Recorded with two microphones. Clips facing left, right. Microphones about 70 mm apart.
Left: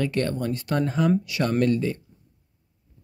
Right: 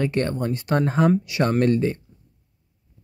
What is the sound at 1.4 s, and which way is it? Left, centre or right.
Speech, right.